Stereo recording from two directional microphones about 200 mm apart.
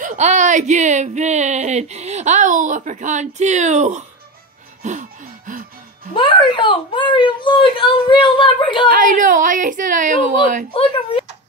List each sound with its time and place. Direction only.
0.0 s speech: 35° right (ahead or behind)
4.8 s a sound: 35° right (ahead or behind)
6.1 s speech: 25° left (ahead or behind)
8.9 s speech: 40° right (ahead or behind)
10.7 s speech: 25° left (ahead or behind)